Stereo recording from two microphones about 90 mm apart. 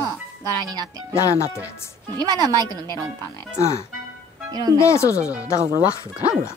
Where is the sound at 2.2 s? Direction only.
45° right (ahead or behind).